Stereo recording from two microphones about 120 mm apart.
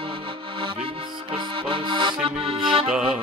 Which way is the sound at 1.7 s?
40° right (ahead or behind).